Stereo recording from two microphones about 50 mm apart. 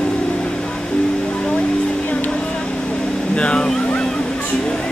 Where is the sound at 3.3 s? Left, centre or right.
Centre.